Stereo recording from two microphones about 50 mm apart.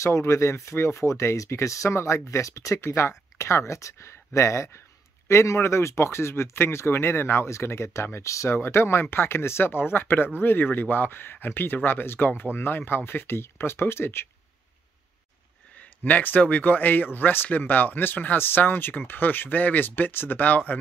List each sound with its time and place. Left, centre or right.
0.0 s speech: left
2.0 s speech: left
8.5 s speech: left
16.0 s speech: left